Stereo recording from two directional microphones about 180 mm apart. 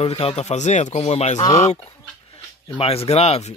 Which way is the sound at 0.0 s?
30° left (ahead or behind).